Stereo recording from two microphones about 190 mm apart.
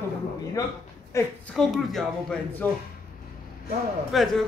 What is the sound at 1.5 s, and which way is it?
A man's voice, centre (ahead or behind).